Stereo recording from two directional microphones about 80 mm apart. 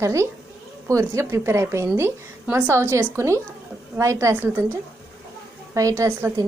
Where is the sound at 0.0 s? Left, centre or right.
Right.